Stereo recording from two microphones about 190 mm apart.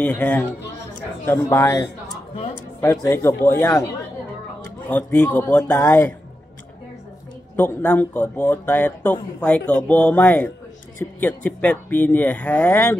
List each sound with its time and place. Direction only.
0.0 s speech: 10° left (ahead or behind)
2.8 s speech: 15° left (ahead or behind)
4.8 s speech: 10° left (ahead or behind)
7.5 s speech: 10° left (ahead or behind)